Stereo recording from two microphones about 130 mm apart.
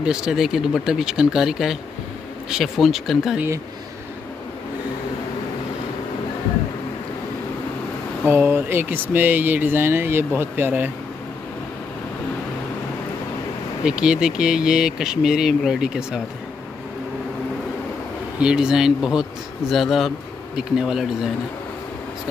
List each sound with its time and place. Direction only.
0.0 s speech: 5° right (ahead or behind)
8.3 s speech: 15° right (ahead or behind)
13.8 s speech: 5° right (ahead or behind)
18.4 s speech: 5° right (ahead or behind)